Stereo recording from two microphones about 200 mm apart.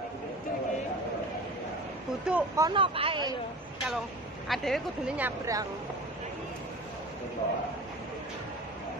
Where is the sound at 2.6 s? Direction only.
25° right (ahead or behind).